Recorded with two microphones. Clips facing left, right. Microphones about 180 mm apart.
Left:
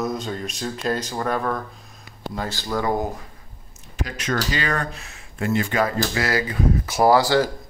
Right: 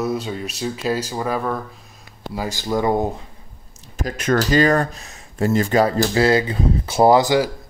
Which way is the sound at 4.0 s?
50° right (ahead or behind).